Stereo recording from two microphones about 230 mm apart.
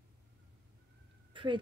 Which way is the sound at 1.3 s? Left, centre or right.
Right.